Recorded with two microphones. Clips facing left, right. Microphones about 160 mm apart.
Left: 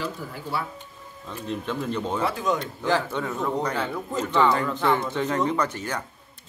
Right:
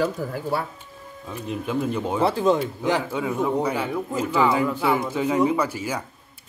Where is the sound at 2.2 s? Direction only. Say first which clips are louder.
Right 8 dB; 30° right (ahead or behind).